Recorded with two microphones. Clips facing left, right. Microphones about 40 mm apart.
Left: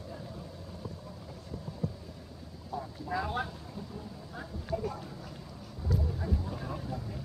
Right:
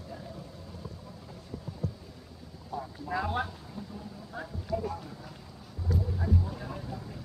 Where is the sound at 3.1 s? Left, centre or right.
Right.